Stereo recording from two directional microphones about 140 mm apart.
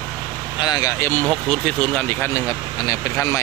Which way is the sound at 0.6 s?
30° left (ahead or behind).